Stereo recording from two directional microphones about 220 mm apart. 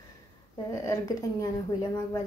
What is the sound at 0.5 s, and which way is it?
A woman's voice, 15° left (ahead or behind).